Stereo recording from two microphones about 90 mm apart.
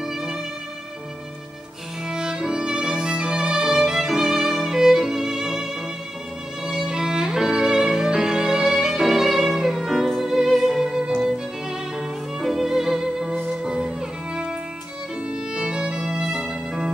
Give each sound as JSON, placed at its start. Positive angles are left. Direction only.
{"t": 2.0, "sound": "violin", "side_deg": -10}
{"t": 12.4, "sound": "music", "side_deg": -5}
{"t": 15.5, "sound": "violin", "side_deg": -10}